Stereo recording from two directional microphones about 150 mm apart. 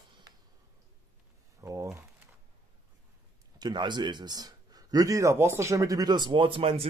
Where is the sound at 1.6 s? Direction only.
20° right (ahead or behind).